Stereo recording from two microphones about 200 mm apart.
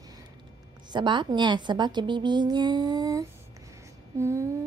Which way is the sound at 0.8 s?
25° right (ahead or behind).